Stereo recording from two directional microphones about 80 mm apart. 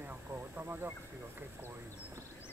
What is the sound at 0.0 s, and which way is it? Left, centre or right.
Vehicle, right.